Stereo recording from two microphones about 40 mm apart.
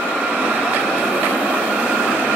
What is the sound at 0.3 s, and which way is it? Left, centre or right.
Vehicle, right.